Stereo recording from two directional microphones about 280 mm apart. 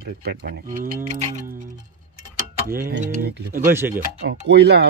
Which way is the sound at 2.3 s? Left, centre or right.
Right.